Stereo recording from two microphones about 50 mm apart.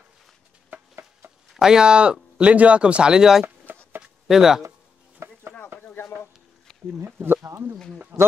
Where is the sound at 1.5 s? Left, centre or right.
Centre.